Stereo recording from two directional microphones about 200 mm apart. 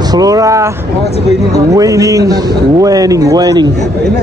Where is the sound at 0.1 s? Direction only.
15° right (ahead or behind).